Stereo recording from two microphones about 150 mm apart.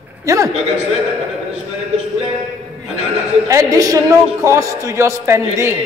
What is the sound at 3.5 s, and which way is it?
A man's voice, 25° right (ahead or behind).